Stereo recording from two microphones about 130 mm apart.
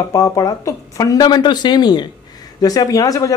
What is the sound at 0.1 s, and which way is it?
Speech, 30° left (ahead or behind).